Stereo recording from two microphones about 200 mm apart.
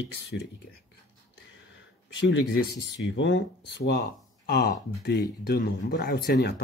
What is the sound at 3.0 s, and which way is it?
Speech, 65° left (ahead or behind).